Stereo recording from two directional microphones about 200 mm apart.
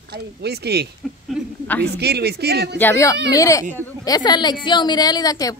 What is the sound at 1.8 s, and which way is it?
Speech, 55° right (ahead or behind).